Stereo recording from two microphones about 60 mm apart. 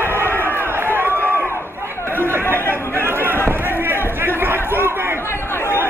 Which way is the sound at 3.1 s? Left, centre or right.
Right.